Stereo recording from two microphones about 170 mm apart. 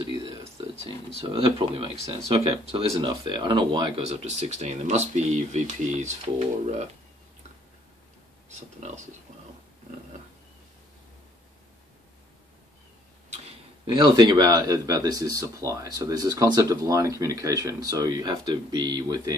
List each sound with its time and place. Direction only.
0.6 s speech: 35° right (ahead or behind)
13.9 s speech: 25° right (ahead or behind)